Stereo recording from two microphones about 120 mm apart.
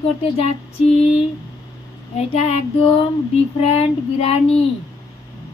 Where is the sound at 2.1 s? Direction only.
55° left (ahead or behind).